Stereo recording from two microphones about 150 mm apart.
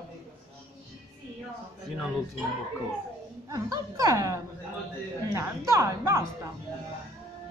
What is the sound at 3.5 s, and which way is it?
A woman's voice, 25° right (ahead or behind).